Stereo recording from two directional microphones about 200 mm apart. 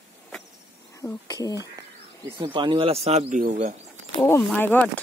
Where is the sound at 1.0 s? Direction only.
15° left (ahead or behind).